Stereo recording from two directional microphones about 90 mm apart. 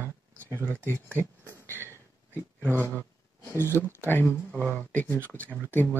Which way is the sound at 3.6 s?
25° left (ahead or behind).